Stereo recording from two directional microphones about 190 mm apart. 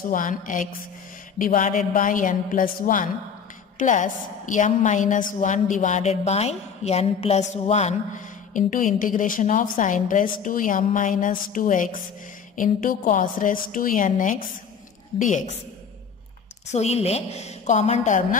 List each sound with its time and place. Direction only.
0.1 s a woman's voice: 45° left (ahead or behind)
16.7 s a woman's voice: 35° left (ahead or behind)